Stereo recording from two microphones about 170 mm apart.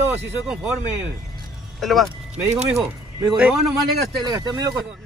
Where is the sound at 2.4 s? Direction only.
40° right (ahead or behind).